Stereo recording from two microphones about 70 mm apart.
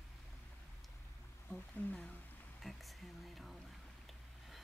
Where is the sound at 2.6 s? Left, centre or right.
Centre.